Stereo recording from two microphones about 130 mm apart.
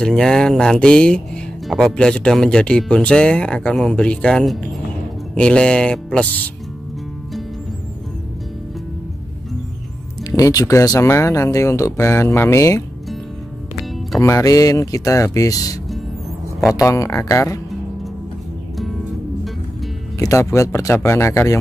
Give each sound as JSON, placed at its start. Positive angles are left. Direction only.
{"t": 0.0, "sound": "speech", "side_deg": 5}
{"t": 10.3, "sound": "speech", "side_deg": 25}
{"t": 14.2, "sound": "speech", "side_deg": 25}
{"t": 20.2, "sound": "speech", "side_deg": 25}